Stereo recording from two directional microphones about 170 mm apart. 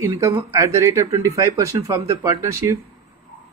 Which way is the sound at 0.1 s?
15° right (ahead or behind).